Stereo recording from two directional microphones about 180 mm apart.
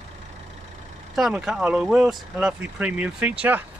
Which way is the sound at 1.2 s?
5° right (ahead or behind).